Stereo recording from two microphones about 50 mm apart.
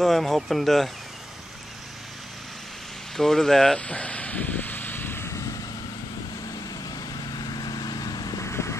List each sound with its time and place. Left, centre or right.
0.0 s speech: centre
3.2 s speech: centre
3.8 s vehicle: left
8.4 s vehicle: left